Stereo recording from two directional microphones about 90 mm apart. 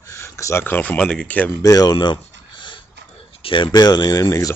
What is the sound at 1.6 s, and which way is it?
Speech, 45° left (ahead or behind).